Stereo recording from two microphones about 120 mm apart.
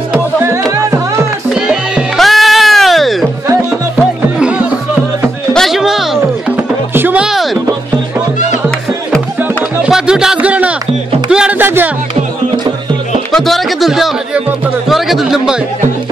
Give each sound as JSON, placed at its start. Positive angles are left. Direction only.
{"t": 0.1, "sound": "music", "side_deg": -20}
{"t": 1.5, "sound": "music", "side_deg": -5}
{"t": 4.4, "sound": "music", "side_deg": -10}
{"t": 5.5, "sound": "music", "side_deg": 0}
{"t": 6.5, "sound": "music", "side_deg": -15}
{"t": 9.8, "sound": "music", "side_deg": -5}
{"t": 13.3, "sound": "music", "side_deg": 0}
{"t": 14.9, "sound": "speech", "side_deg": 0}